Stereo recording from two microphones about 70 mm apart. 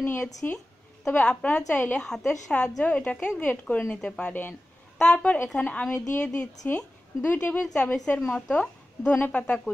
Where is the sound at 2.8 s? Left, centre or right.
Centre.